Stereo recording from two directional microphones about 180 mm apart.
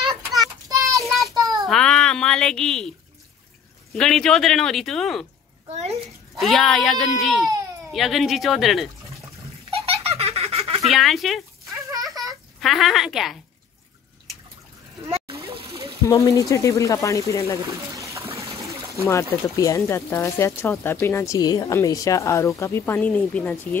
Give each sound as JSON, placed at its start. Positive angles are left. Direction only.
{"t": 0.7, "sound": "child singing", "side_deg": -20}
{"t": 1.7, "sound": "a sound", "side_deg": 5}
{"t": 3.9, "sound": "speech", "side_deg": 0}
{"t": 5.7, "sound": "a sound", "side_deg": -40}
{"t": 6.4, "sound": "speech", "side_deg": 0}
{"t": 9.7, "sound": "giggle", "side_deg": -35}
{"t": 10.9, "sound": "speech", "side_deg": 0}
{"t": 12.5, "sound": "speech", "side_deg": 0}
{"t": 15.0, "sound": "a sound", "side_deg": -30}
{"t": 16.1, "sound": "speech", "side_deg": 20}
{"t": 17.6, "sound": "water", "side_deg": -15}
{"t": 19.0, "sound": "speech", "side_deg": 15}